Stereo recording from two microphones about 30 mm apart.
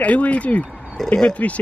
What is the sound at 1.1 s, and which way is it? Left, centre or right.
Speech, left.